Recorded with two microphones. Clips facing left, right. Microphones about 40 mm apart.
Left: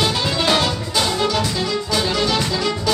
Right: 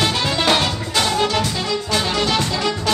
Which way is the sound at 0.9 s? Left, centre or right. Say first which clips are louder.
Right 2 dB; right.